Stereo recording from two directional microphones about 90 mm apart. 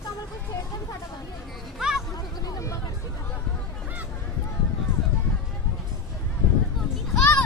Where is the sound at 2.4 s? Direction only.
40° left (ahead or behind).